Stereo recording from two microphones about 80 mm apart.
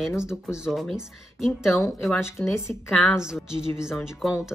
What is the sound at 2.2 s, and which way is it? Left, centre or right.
Speech, left.